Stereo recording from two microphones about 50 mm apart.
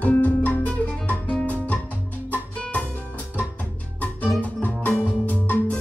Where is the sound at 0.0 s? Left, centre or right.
Left.